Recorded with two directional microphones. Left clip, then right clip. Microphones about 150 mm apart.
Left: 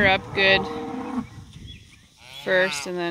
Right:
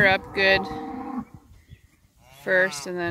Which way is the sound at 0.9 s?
40° left (ahead or behind).